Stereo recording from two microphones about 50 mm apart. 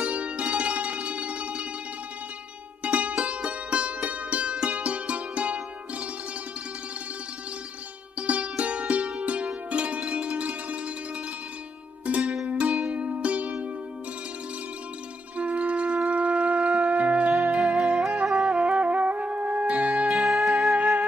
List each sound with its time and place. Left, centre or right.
0.0 s music: right
2.8 s music: right
8.2 s music: right
12.4 s music: right
15.3 s wind instrument: right
16.1 s shofar: right
17.4 s music: centre
20.2 s music: centre
20.7 s music: right